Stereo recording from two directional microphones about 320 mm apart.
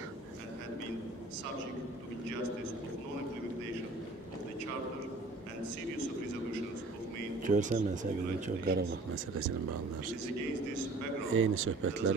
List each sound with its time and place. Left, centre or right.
7.4 s speech: right
11.3 s speech: right